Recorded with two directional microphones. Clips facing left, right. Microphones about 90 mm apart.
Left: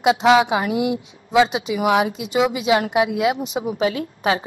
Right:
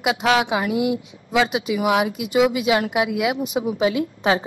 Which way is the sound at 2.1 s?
35° left (ahead or behind).